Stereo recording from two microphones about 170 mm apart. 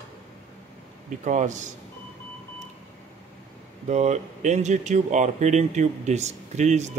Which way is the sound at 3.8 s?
45° right (ahead or behind).